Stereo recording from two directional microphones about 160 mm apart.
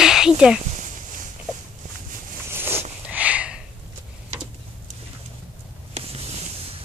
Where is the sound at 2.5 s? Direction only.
15° right (ahead or behind).